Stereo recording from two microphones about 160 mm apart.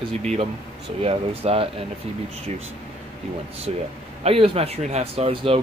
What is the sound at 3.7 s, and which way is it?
Speech, 40° right (ahead or behind).